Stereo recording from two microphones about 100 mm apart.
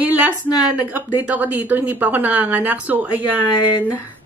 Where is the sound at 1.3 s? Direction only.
15° right (ahead or behind).